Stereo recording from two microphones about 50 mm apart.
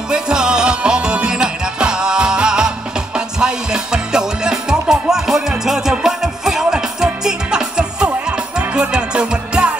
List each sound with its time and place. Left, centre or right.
0.1 s music: centre